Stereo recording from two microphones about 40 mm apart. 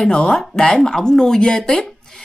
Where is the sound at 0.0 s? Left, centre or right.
Centre.